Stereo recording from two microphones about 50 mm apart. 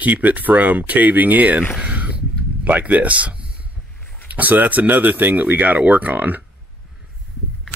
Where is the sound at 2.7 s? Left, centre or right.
Right.